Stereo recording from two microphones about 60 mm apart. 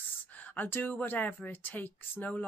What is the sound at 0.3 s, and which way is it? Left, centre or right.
Speech, left.